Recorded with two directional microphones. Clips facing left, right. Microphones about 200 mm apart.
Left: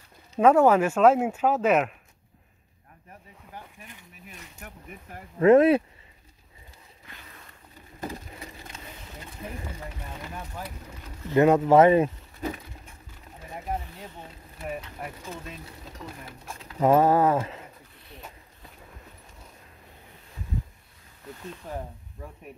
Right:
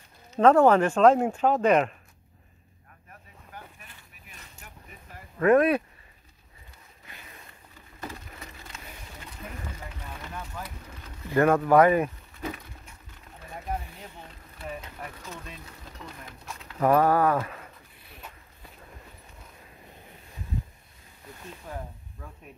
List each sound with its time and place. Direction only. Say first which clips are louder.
0.4 s speech: even; 10° left (ahead or behind)
4.6 s a sound: left 7 dB; 55° left (ahead or behind)
5.4 s speech: left 3 dB; 25° left (ahead or behind)
10.3 s speech: left 1 dB; 25° left (ahead or behind)
13.4 s a sound: left 1 dB; 20° left (ahead or behind)
16.8 s speech: left 2 dB; 25° left (ahead or behind)